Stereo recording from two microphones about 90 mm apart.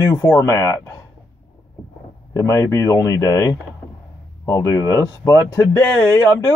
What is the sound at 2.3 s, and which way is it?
Speech, 35° left (ahead or behind).